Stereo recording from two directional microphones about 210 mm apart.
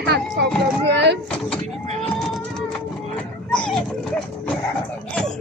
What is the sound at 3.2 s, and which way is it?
Children playing, 5° left (ahead or behind).